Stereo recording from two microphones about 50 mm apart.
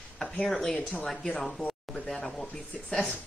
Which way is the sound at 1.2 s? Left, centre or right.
Centre.